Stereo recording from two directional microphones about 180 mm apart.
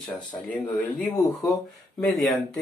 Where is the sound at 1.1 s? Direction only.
20° left (ahead or behind).